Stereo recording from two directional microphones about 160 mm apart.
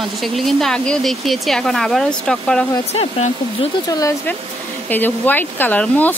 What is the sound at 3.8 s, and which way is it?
Speech, 25° left (ahead or behind).